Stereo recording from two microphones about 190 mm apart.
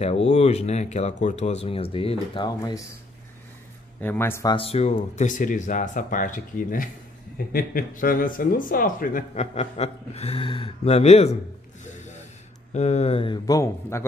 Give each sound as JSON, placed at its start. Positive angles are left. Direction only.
{"t": 0.0, "sound": "speech", "side_deg": 35}
{"t": 4.0, "sound": "a man's voice", "side_deg": 10}
{"t": 4.6, "sound": "speech", "side_deg": 35}
{"t": 11.8, "sound": "snort", "side_deg": 40}
{"t": 12.7, "sound": "speech", "side_deg": 35}